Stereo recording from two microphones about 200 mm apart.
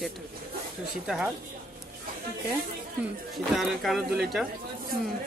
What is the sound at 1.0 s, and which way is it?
Speech, 5° right (ahead or behind).